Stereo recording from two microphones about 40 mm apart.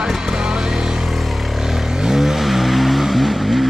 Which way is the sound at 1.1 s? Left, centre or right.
Centre.